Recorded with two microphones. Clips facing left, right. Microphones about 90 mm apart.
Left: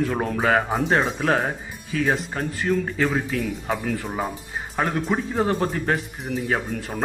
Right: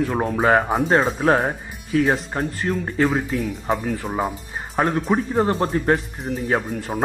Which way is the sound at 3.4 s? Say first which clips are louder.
Right 2 dB; 10° right (ahead or behind).